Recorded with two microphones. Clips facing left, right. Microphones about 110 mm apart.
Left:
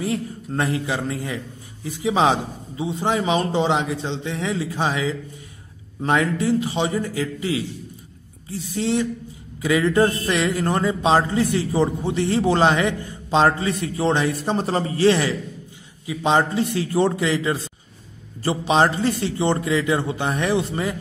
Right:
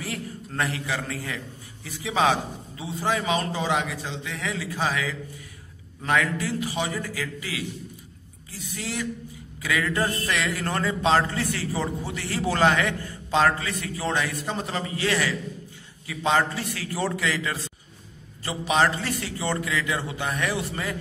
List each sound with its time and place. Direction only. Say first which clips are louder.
0.0 s a man's voice: left 8 dB; 25° left (ahead or behind)